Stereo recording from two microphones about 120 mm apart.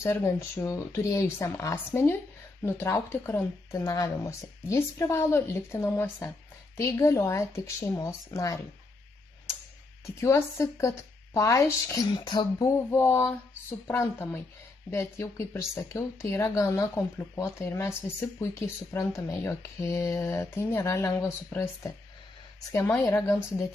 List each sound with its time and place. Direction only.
0.0 s speech: 20° left (ahead or behind)
10.2 s speech: 25° left (ahead or behind)
12.3 s a sound: 40° left (ahead or behind)
12.7 s speech: 20° left (ahead or behind)